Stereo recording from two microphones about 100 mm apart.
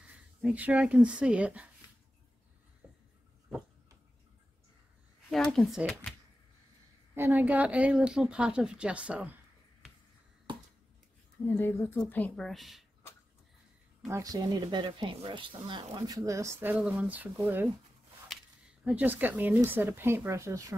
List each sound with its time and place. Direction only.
0.0 s speech: 10° right (ahead or behind)
2.8 s writing: 10° right (ahead or behind)
5.3 s speech: 5° left (ahead or behind)
7.2 s speech: 20° right (ahead or behind)
11.4 s a woman's voice: 20° left (ahead or behind)
12.4 s a woman's voice: centre (ahead or behind)
14.0 s speech: 35° right (ahead or behind)
16.5 s speech: 20° right (ahead or behind)
18.9 s speech: 15° right (ahead or behind); by 20.7 s 30° right (ahead or behind)